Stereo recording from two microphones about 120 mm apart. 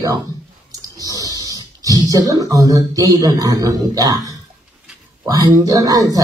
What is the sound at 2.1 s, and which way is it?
Speech, 30° right (ahead or behind).